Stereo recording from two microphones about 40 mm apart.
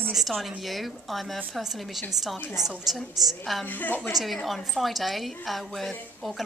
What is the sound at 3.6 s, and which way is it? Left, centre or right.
Speech, left.